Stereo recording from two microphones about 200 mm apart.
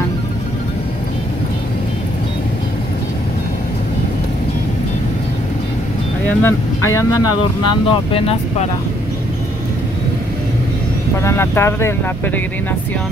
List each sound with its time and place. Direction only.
6.2 s speech: 10° left (ahead or behind); by 8.6 s 30° left (ahead or behind)
11.1 s speech: 10° left (ahead or behind)